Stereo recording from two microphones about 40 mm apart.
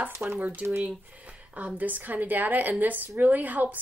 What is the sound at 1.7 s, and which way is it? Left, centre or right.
A woman's voice, right.